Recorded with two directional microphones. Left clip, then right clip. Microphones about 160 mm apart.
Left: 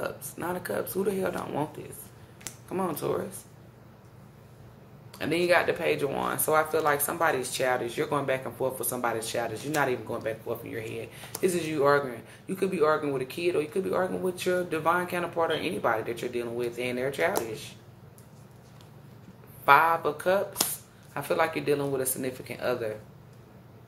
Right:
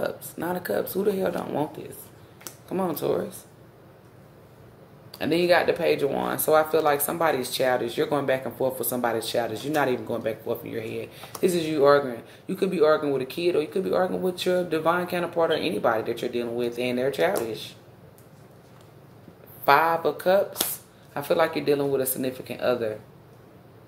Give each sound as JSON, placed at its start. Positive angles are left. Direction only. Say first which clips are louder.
{"t": 0.0, "sound": "speech", "louder": "right 4 dB", "side_deg": -30}
{"t": 5.1, "sound": "speech", "louder": "right 3 dB", "side_deg": -25}
{"t": 19.6, "sound": "speech", "louder": "right 1 dB", "side_deg": -30}